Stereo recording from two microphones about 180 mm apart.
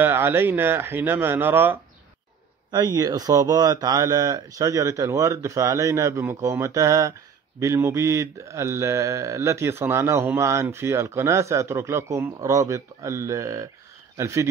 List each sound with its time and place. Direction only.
0.0 s speech: 10° right (ahead or behind)